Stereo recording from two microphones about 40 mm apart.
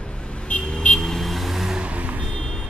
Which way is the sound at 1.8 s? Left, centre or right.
Right.